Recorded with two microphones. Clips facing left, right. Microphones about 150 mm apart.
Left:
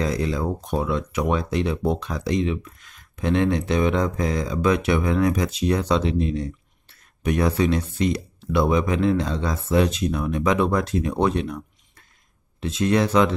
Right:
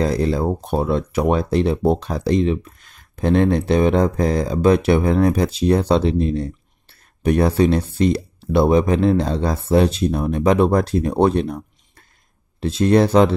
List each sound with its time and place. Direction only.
0.0 s speech: 35° right (ahead or behind)